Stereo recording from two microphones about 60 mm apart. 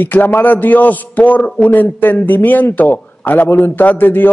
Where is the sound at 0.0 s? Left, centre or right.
Left.